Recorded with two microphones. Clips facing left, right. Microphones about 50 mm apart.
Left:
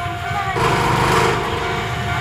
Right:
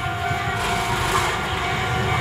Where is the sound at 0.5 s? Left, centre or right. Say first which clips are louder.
Left 6 dB; left.